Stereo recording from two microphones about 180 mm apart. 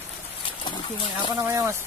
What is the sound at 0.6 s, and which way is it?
Speech, 25° left (ahead or behind).